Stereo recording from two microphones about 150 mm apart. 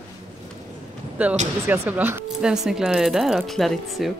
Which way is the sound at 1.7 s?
10° right (ahead or behind).